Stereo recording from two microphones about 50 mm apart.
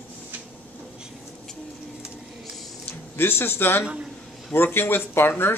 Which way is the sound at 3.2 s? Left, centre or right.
Left.